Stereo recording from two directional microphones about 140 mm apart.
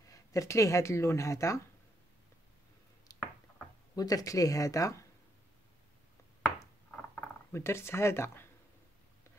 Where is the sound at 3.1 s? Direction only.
25° left (ahead or behind).